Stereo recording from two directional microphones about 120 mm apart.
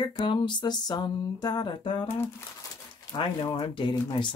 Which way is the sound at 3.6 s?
45° left (ahead or behind).